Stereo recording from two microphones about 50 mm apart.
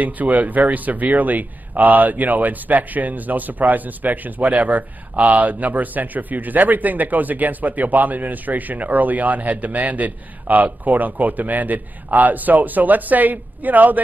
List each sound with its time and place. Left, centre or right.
0.0 s speech: right